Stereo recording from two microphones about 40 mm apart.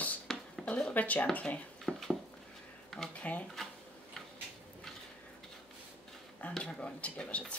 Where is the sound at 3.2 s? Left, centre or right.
Left.